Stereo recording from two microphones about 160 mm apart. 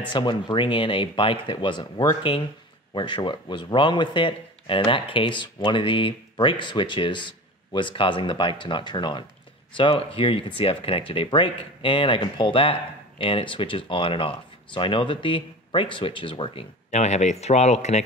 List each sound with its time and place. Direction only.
0.1 s a man's voice: 30° left (ahead or behind); by 18.0 s 45° left (ahead or behind)